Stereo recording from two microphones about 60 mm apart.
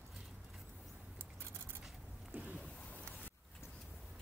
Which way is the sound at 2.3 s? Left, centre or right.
Right.